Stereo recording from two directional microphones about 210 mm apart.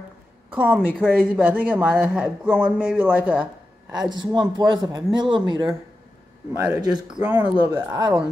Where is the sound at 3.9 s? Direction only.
20° right (ahead or behind).